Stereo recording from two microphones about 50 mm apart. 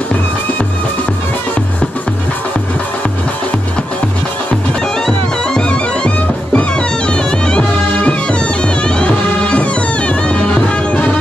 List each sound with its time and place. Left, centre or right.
5.0 s music: centre